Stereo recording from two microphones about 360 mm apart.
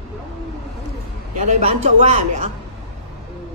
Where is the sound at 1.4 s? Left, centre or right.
Centre.